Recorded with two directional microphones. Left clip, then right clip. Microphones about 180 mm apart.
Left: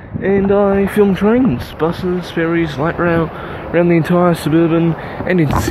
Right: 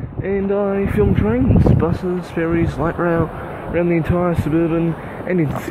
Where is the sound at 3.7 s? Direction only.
15° left (ahead or behind).